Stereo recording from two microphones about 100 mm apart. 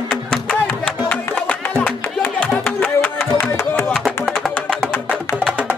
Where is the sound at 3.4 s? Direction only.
20° left (ahead or behind).